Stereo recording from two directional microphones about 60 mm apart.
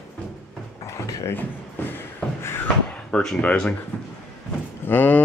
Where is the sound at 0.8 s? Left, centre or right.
Left.